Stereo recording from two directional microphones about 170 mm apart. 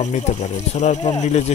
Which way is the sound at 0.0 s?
45° left (ahead or behind).